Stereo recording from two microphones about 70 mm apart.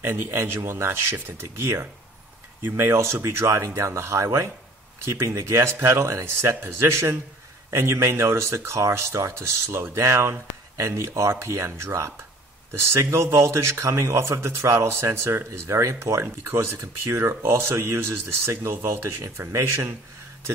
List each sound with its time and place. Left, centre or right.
0.0 s a man's voice: right